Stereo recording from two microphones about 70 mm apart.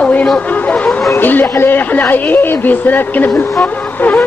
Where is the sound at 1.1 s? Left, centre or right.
Left.